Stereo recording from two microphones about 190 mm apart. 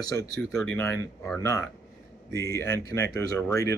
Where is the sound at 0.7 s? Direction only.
10° left (ahead or behind).